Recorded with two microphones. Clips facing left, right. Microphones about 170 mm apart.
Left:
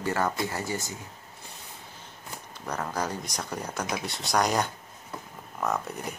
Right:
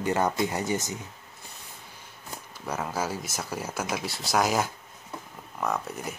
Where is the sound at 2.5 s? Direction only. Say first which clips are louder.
Right 1 dB; 5° right (ahead or behind).